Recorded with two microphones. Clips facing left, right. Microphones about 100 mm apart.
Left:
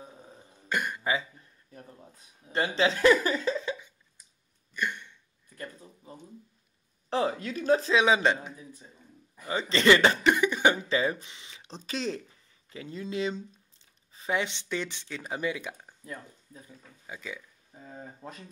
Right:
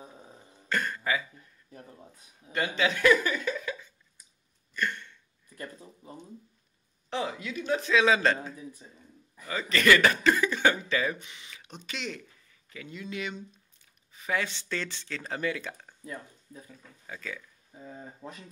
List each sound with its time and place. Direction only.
0.7 s speech: 15° left (ahead or behind)
2.5 s speech: 30° left (ahead or behind)
4.7 s a sound: 15° left (ahead or behind)
7.1 s a woman's voice: 40° left (ahead or behind)
8.0 s speech: 15° left (ahead or behind)
9.4 s speech: 25° left (ahead or behind)